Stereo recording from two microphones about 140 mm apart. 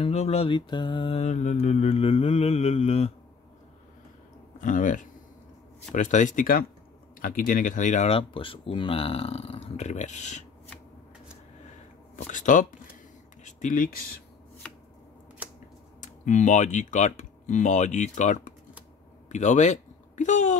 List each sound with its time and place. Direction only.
0.0 s speech: 50° left (ahead or behind)
0.6 s mantra: 35° left (ahead or behind)
1.2 s speech: 55° left (ahead or behind)
4.6 s speech: 65° left (ahead or behind)
8.2 s speech: 40° left (ahead or behind); by 10.4 s 60° left (ahead or behind)
12.2 s speech: 65° left (ahead or behind)
13.4 s a sound: 60° left (ahead or behind); by 13.9 s 80° left
16.0 s speech: 60° left (ahead or behind)